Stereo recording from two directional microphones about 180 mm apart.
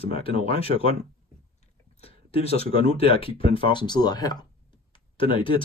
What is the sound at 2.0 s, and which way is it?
Speech, 35° left (ahead or behind).